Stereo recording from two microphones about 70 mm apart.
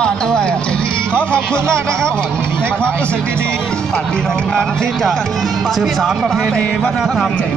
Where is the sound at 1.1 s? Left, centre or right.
Right.